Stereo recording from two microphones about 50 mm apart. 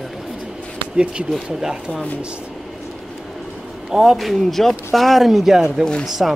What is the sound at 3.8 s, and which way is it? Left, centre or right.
Speech, centre.